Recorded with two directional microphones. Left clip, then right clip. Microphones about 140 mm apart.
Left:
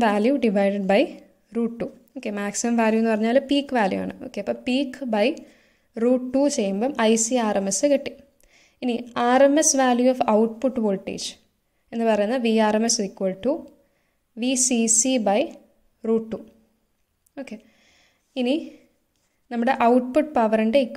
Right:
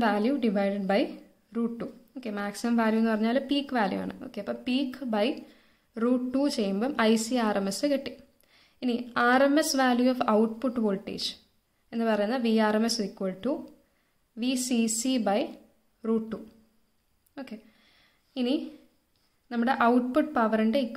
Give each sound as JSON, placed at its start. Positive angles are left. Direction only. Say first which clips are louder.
{"t": 0.0, "sound": "a woman's voice", "louder": "left 6 dB", "side_deg": 40}
{"t": 17.4, "sound": "a sound", "louder": "left 5 dB", "side_deg": 35}
{"t": 19.5, "sound": "a woman's voice", "louder": "left 5 dB", "side_deg": 35}